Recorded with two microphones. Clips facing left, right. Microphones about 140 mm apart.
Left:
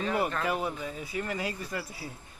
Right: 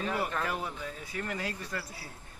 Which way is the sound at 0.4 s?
10° left (ahead or behind).